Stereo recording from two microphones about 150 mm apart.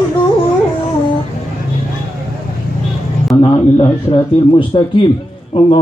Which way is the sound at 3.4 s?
40° left (ahead or behind).